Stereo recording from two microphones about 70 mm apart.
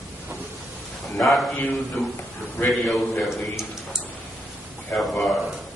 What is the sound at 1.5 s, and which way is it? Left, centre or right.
Speech, left.